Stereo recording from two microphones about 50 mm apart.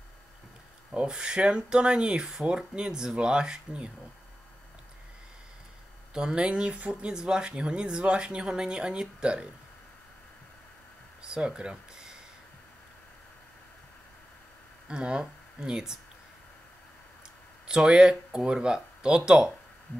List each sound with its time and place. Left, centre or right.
0.9 s speech: centre
6.1 s speech: centre
11.2 s a sound: centre
14.9 s speech: centre
17.6 s speech: centre